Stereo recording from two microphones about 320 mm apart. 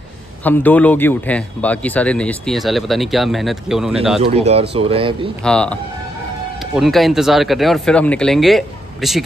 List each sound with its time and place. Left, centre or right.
0.4 s a man's voice: centre
4.2 s speech: centre
5.4 s a man's voice: centre